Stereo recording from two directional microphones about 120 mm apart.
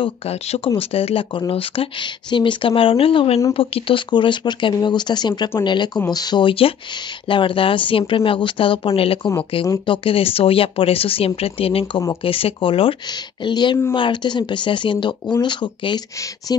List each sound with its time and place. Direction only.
0.7 s speech: 55° left (ahead or behind)